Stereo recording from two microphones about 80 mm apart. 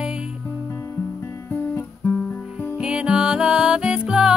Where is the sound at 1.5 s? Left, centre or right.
Left.